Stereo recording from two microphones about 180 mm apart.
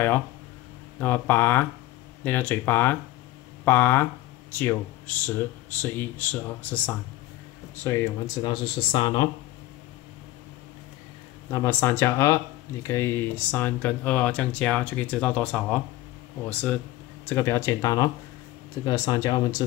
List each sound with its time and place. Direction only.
0.9 s speech: 10° left (ahead or behind)
8.4 s speech: 25° left (ahead or behind)
11.5 s speech: 15° left (ahead or behind)